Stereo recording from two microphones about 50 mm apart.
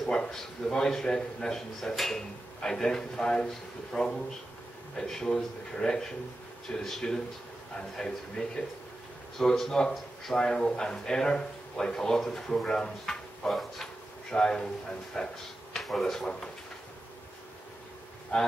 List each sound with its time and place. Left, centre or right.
0.3 s a man's voice: centre
14.3 s a man's voice: centre
18.3 s a man's voice: left